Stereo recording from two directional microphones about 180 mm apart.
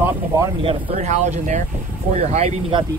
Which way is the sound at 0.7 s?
40° right (ahead or behind).